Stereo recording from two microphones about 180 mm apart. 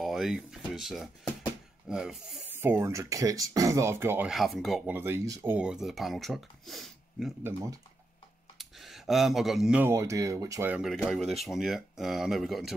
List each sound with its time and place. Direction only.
0.0 s speech: centre (ahead or behind)
2.6 s speech: 15° right (ahead or behind)
4.3 s speech: centre (ahead or behind)
4.8 s speech: 10° right (ahead or behind)
8.5 s speech: centre (ahead or behind)
10.8 s speech: centre (ahead or behind)